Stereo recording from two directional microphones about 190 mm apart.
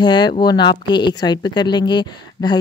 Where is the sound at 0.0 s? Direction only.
20° left (ahead or behind).